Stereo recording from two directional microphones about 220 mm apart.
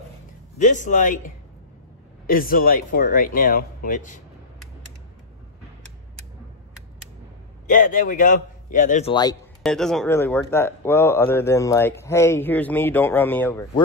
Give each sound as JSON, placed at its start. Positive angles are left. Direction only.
{"t": 0.6, "sound": "speech", "side_deg": 35}
{"t": 2.2, "sound": "speech", "side_deg": 40}
{"t": 7.6, "sound": "speech", "side_deg": 35}
{"t": 9.1, "sound": "speech", "side_deg": 15}
{"t": 9.6, "sound": "speech", "side_deg": 0}